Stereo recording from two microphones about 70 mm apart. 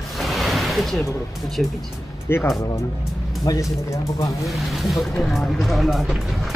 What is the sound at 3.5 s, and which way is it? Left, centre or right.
Speech, left.